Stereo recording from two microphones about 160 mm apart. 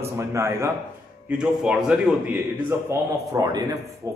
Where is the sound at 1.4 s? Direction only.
5° right (ahead or behind).